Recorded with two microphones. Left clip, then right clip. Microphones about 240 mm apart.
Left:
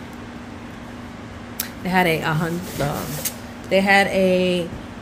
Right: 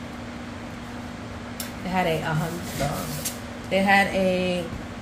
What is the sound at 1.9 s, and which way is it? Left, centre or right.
Speech, left.